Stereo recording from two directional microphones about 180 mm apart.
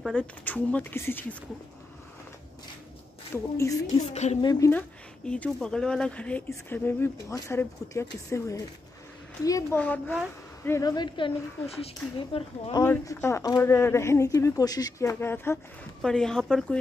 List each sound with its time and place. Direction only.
0.0 s speech: 5° left (ahead or behind)
3.3 s speech: 10° left (ahead or behind)
3.8 s a woman's voice: 40° left (ahead or behind)
4.4 s speech: 20° left (ahead or behind)
12.8 s speech: 15° left (ahead or behind)